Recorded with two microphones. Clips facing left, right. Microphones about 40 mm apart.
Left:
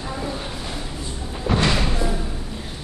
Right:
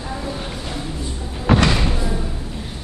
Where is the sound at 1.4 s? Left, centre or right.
Right.